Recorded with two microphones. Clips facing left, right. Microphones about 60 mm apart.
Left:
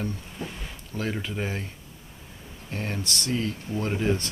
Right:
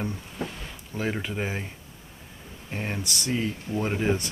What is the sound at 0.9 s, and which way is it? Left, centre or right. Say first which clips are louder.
Speech: right 1 dB; centre.